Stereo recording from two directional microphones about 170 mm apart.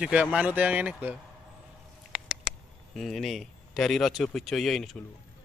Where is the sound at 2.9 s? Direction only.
Centre (ahead or behind).